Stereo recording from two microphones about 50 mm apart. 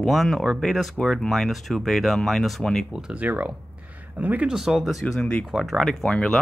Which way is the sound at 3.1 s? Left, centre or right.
Right.